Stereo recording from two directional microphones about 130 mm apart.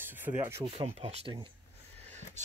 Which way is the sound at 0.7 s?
50° right (ahead or behind).